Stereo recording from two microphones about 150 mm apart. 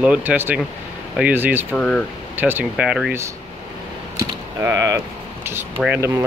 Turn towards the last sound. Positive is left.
turn(degrees=-20)  # may be behind; listen again after turning